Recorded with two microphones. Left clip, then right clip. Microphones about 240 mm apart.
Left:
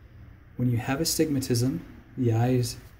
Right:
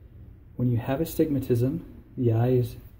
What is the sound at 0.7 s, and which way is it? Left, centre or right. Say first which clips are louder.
Speech: left 1 dB; left.